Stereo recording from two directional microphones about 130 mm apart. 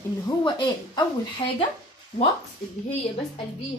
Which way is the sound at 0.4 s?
35° left (ahead or behind).